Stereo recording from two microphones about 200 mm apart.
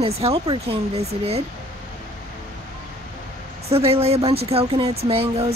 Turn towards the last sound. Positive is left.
turn(degrees=-30)  # may be behind; listen again after turning